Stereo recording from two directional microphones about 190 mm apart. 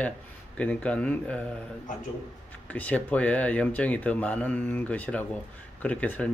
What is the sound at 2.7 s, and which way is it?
Speech, 10° left (ahead or behind).